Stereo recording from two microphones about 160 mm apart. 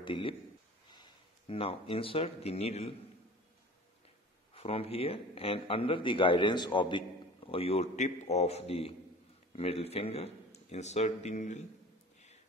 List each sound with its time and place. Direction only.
0.0 s a man's voice: 30° left (ahead or behind)
4.6 s a man's voice: 35° left (ahead or behind)